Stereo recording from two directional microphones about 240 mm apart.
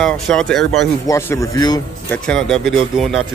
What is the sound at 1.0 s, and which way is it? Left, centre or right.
Speech, centre.